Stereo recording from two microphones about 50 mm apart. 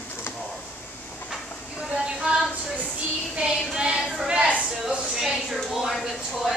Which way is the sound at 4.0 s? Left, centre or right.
Centre.